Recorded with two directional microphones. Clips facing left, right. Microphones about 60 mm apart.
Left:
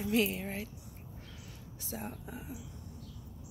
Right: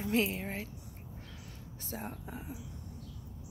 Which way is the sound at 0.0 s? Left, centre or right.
Right.